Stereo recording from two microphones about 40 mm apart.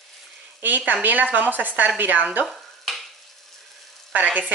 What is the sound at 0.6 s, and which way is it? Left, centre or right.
A woman's voice, right.